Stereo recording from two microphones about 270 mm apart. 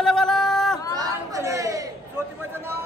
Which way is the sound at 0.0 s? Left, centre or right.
Centre.